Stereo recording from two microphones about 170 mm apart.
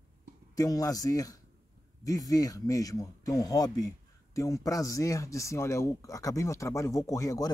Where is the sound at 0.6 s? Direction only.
20° left (ahead or behind).